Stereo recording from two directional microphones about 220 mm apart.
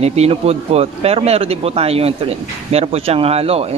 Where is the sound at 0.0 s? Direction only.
30° right (ahead or behind).